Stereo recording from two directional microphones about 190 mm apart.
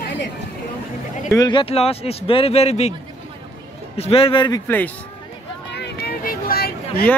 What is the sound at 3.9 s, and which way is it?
Speech, 30° left (ahead or behind).